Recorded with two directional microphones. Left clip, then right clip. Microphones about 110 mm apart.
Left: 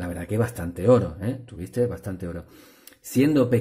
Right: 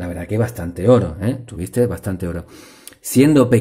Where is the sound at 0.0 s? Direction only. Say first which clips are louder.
Right 5 dB; 15° left (ahead or behind).